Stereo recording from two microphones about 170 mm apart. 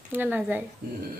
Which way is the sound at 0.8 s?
65° right (ahead or behind).